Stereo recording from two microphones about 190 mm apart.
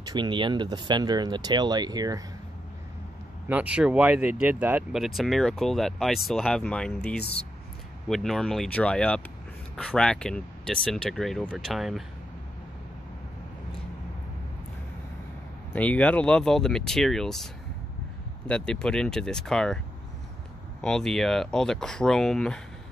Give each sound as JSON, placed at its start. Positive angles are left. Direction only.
{"t": 0.0, "sound": "speech", "side_deg": -25}
{"t": 3.4, "sound": "speech", "side_deg": -5}
{"t": 15.7, "sound": "speech", "side_deg": 10}
{"t": 18.5, "sound": "speech", "side_deg": 5}
{"t": 20.8, "sound": "speech", "side_deg": 5}